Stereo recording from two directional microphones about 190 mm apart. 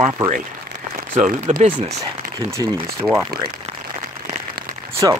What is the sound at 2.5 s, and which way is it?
Speech, 20° right (ahead or behind).